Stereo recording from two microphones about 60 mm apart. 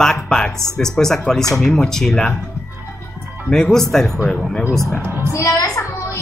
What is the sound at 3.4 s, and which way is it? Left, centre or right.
Speech, centre.